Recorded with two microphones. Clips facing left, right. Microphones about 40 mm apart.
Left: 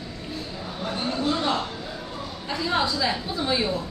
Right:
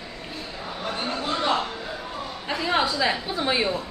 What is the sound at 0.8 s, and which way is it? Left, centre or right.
Vehicle, right.